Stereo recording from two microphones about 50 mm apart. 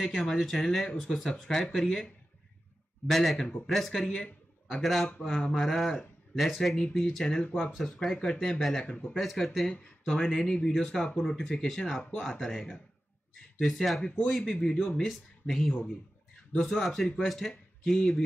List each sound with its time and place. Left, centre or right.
0.0 s speech: centre
3.1 s speech: centre
7.2 s speech: centre
7.7 s speech: centre
8.8 s speech: left
9.1 s speech: centre
10.3 s speech: centre
14.0 s speech: left
14.6 s speech: centre
16.8 s speech: centre